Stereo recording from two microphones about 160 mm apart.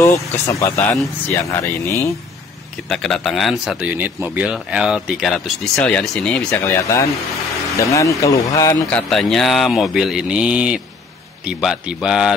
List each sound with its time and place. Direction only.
0.0 s speech: 20° left (ahead or behind)
2.9 s speech: centre (ahead or behind); by 9.0 s 20° left (ahead or behind)
9.1 s speech: 5° left (ahead or behind)